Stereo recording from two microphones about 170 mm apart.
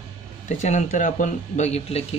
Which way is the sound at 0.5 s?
45° left (ahead or behind).